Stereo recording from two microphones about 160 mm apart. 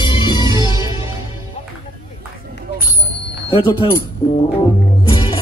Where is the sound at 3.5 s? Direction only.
30° left (ahead or behind).